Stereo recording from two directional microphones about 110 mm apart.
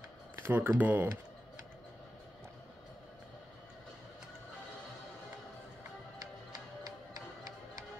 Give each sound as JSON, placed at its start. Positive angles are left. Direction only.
{"t": 0.4, "sound": "speech", "side_deg": -15}